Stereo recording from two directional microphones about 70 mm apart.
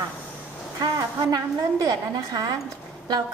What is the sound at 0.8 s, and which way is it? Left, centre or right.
A woman's voice, right.